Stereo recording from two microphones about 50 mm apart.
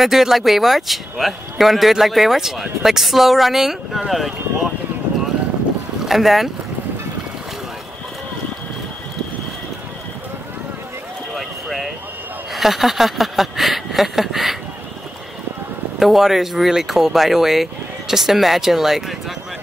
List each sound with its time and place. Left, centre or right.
0.0 s speech: centre
6.0 s speech: centre
11.3 s clip-clop: centre
12.5 s speech: centre
16.0 s speech: centre